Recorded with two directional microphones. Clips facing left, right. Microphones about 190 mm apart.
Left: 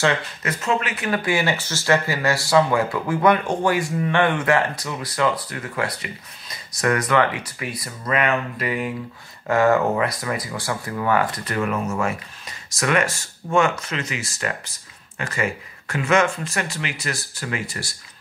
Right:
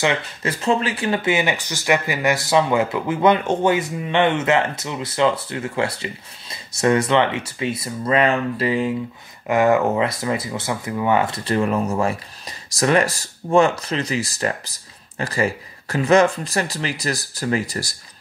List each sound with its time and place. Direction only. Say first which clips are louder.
0.0 s speech: even; 20° right (ahead or behind)
0.5 s speech: right 3 dB; 30° right (ahead or behind)